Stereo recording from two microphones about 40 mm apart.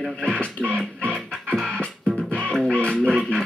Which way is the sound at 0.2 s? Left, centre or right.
Left.